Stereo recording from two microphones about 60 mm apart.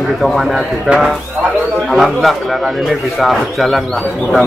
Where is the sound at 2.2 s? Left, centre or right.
Centre.